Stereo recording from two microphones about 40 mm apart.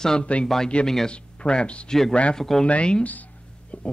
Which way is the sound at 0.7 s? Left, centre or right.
Left.